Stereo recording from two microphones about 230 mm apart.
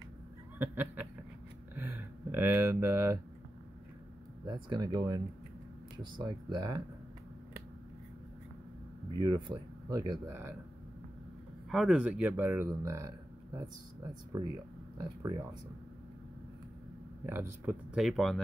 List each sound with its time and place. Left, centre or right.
0.6 s speech: centre
4.5 s speech: centre
9.2 s speech: centre
11.7 s speech: centre
17.3 s speech: centre